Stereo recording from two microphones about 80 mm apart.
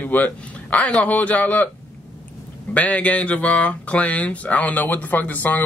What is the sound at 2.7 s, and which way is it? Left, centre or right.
Speech, centre.